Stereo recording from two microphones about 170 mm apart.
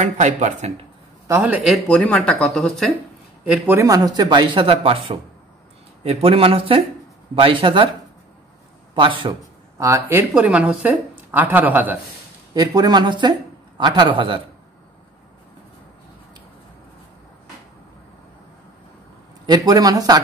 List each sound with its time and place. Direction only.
0.0 s speech: 45° right (ahead or behind)
1.2 s speech: 15° right (ahead or behind); by 2.9 s 5° left (ahead or behind)
3.4 s a man's voice: 5° right (ahead or behind); by 7.9 s 30° right (ahead or behind)
8.9 s speech: 30° right (ahead or behind)
9.8 s speech: 20° right (ahead or behind)
12.5 s speech: 25° right (ahead or behind)
19.4 s speech: 25° right (ahead or behind)